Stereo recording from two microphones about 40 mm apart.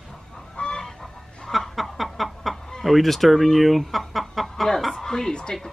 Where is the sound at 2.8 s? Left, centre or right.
Centre.